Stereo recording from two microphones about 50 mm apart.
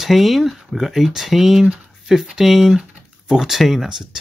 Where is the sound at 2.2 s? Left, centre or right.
Centre.